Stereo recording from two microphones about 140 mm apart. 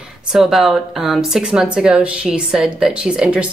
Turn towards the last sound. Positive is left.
turn(degrees=-5)  # may be behind; listen again after turning